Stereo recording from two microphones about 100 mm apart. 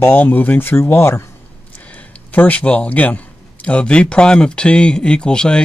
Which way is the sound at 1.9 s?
15° left (ahead or behind).